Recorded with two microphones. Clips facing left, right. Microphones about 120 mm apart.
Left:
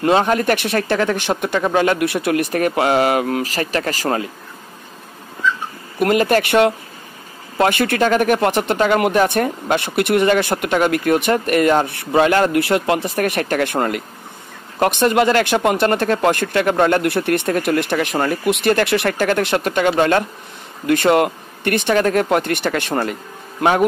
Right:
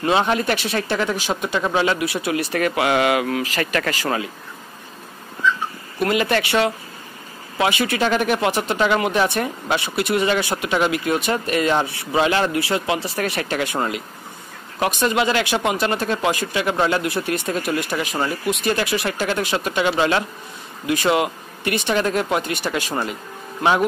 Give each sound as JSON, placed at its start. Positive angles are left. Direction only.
{"t": 0.0, "sound": "speech", "side_deg": 45}
{"t": 2.5, "sound": "speech", "side_deg": 40}
{"t": 6.0, "sound": "speech", "side_deg": 45}